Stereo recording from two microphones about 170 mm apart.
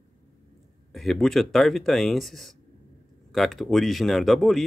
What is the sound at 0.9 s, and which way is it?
Speech, centre (ahead or behind).